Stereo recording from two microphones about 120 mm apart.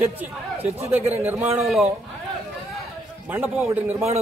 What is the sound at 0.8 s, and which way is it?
Speech, 20° right (ahead or behind).